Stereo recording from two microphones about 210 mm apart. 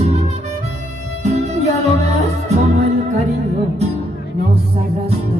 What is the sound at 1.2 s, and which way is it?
Music, 30° right (ahead or behind).